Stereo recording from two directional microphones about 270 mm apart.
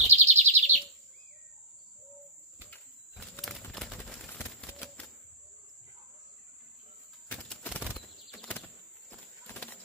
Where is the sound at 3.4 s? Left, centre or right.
Centre.